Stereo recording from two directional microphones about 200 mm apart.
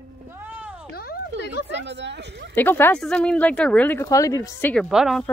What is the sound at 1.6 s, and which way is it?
Speech, 60° right (ahead or behind).